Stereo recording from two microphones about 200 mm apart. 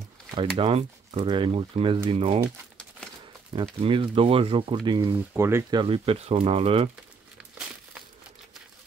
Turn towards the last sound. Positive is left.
turn(degrees=-5)  # may be behind; listen again after turning